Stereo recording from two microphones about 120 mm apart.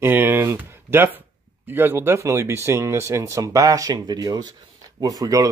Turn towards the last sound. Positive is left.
turn(degrees=-30)  # may be behind; listen again after turning